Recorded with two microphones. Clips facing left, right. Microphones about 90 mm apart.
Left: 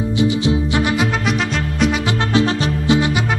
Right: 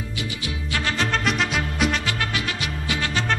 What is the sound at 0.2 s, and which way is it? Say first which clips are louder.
Music: left 16 dB; 20° left (ahead or behind).